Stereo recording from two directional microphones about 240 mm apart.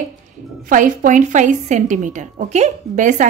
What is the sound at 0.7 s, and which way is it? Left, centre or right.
A woman's voice, right.